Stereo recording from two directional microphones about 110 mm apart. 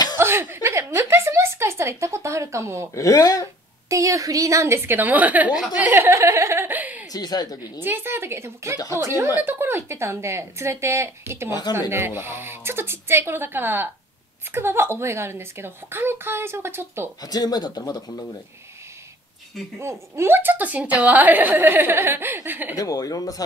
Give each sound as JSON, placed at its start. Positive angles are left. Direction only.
{"t": 0.2, "sound": "a woman's voice", "side_deg": -20}
{"t": 2.9, "sound": "speech", "side_deg": 30}
{"t": 3.9, "sound": "a child's voice", "side_deg": -30}
{"t": 7.1, "sound": "speech", "side_deg": 35}
{"t": 7.8, "sound": "a child's voice", "side_deg": -20}
{"t": 17.2, "sound": "speech", "side_deg": 35}
{"t": 19.8, "sound": "a woman's voice", "side_deg": -25}
{"t": 22.8, "sound": "speech", "side_deg": 35}